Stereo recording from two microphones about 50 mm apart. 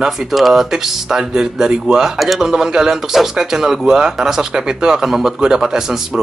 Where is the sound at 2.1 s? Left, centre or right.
Centre.